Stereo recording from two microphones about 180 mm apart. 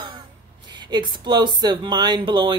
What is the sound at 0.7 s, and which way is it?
Speech, 25° right (ahead or behind).